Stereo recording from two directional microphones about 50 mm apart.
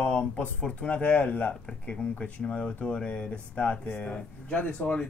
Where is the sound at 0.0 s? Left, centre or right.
Left.